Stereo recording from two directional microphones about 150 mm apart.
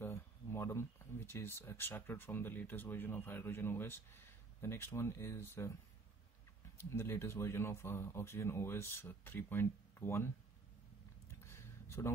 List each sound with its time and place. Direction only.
0.0 s speech: 15° left (ahead or behind)
6.9 s speech: 20° left (ahead or behind)
11.4 s a sound: 15° left (ahead or behind)